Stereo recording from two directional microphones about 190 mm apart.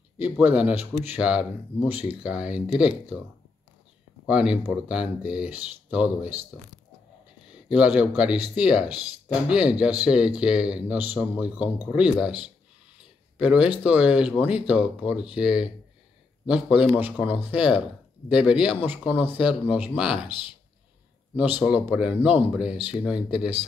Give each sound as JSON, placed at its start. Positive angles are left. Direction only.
{"t": 0.2, "sound": "a man's voice", "side_deg": -10}
{"t": 4.3, "sound": "a man's voice", "side_deg": -5}
{"t": 20.2, "sound": "speech", "side_deg": 25}
{"t": 21.4, "sound": "a man's voice", "side_deg": -10}